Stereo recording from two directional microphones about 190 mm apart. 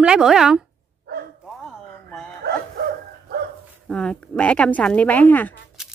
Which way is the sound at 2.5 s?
55° right (ahead or behind).